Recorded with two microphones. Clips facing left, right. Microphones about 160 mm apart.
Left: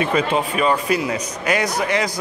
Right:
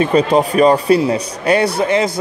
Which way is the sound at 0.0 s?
35° right (ahead or behind).